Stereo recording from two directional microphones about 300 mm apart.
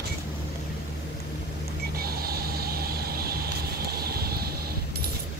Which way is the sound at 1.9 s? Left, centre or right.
Right.